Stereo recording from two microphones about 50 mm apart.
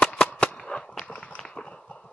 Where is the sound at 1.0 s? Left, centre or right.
Left.